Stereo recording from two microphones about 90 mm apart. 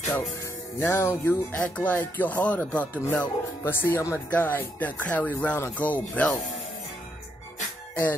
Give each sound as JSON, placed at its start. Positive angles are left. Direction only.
{"t": 0.7, "sound": "speech", "side_deg": 30}
{"t": 1.5, "sound": "speech", "side_deg": 15}